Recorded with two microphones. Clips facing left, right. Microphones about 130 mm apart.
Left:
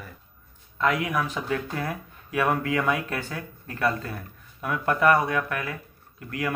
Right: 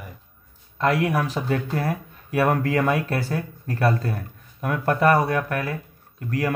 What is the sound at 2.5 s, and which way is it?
Speech, 45° right (ahead or behind).